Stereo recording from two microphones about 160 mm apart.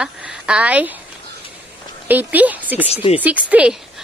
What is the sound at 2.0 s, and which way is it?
Speech, 10° right (ahead or behind).